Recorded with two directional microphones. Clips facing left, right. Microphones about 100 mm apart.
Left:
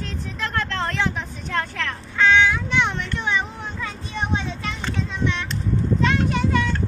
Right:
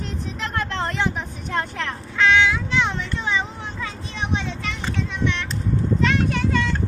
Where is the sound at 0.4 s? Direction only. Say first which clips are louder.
Left 1 dB; 20° right (ahead or behind).